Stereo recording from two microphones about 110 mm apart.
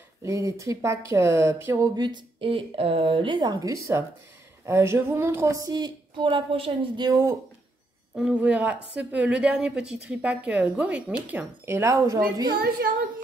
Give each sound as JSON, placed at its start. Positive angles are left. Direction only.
{"t": 0.2, "sound": "speech", "side_deg": -30}
{"t": 2.0, "sound": "speech", "side_deg": -45}
{"t": 3.5, "sound": "a woman's voice", "side_deg": -30}
{"t": 7.0, "sound": "a woman's voice", "side_deg": -30}
{"t": 8.1, "sound": "a woman's voice", "side_deg": -5}